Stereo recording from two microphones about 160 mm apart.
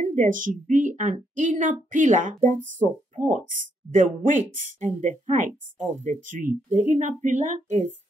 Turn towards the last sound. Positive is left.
turn(degrees=-50)  # may be behind; listen again after turning